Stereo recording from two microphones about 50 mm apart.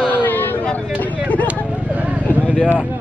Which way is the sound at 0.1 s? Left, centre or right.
Left.